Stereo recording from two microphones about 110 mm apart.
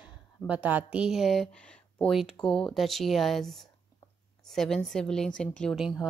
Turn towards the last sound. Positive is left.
turn(degrees=-5)  # may be behind; listen again after turning